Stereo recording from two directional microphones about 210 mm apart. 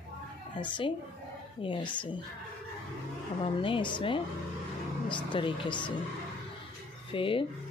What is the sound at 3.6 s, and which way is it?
Speech, 25° left (ahead or behind).